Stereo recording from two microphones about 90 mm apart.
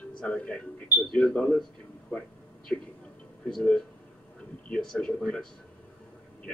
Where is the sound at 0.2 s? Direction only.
10° left (ahead or behind).